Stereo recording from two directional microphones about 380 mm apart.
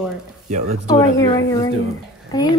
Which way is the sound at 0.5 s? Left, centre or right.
Centre.